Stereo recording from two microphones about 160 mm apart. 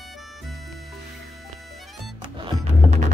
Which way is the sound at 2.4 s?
45° right (ahead or behind).